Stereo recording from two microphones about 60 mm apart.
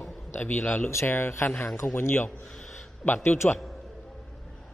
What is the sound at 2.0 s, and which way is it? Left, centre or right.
Speech, left.